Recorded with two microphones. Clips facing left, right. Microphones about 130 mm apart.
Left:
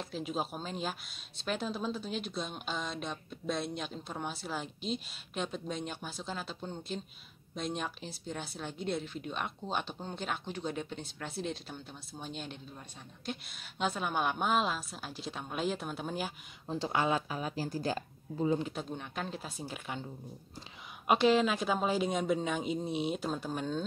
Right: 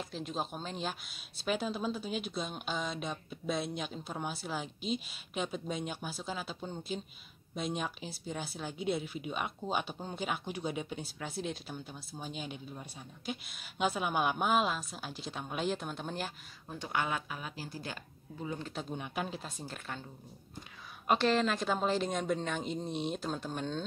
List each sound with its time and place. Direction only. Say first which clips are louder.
0.0 s speech: left 2 dB; 5° left (ahead or behind)
16.6 s speech: left 4 dB; 30° left (ahead or behind)
18.7 s speech: even; centre (ahead or behind)
19.4 s speech: left 2 dB; 10° left (ahead or behind)
21.1 s speech: left 2 dB; 10° left (ahead or behind)